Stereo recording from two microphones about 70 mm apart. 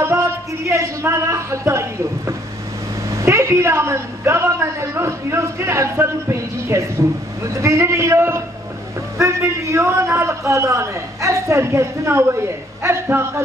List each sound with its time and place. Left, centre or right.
0.0 s a sound: right
7.6 s a man's voice: right
9.7 s a man's voice: right